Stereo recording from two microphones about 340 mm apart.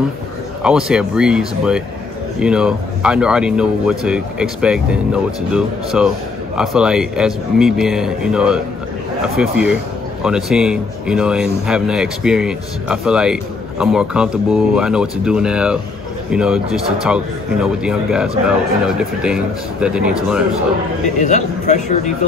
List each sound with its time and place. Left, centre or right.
0.6 s speech: centre
21.2 s a man's voice: left